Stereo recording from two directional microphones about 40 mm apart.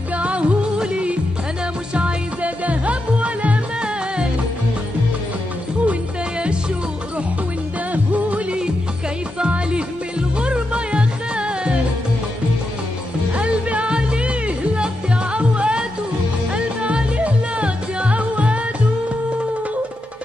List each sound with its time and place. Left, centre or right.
0.1 s music: right
7.9 s music: right
9.4 s music: right
13.4 s music: right